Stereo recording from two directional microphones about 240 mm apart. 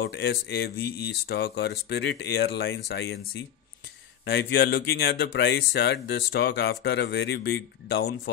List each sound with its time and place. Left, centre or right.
0.0 s speech: left
4.3 s speech: left